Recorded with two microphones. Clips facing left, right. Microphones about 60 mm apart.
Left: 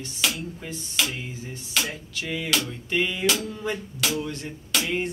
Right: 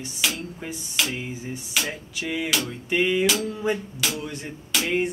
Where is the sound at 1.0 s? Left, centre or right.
Centre.